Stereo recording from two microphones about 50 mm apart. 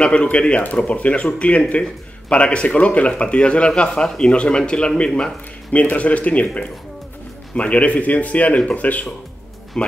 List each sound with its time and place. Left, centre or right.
0.0 s speech: left
9.8 s speech: centre